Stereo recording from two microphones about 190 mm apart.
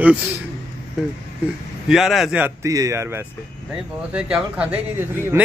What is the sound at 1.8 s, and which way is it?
Speech, centre (ahead or behind).